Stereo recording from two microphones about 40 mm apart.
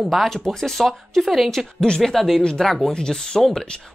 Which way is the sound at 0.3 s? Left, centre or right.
Centre.